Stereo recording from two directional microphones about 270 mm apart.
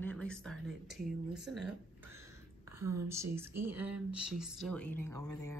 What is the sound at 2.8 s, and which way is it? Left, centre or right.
Speech, right.